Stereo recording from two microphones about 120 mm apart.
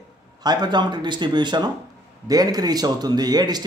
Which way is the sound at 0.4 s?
35° right (ahead or behind).